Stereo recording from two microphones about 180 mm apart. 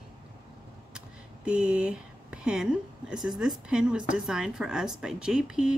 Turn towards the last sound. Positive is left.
turn(degrees=-5)  # may be behind; listen again after turning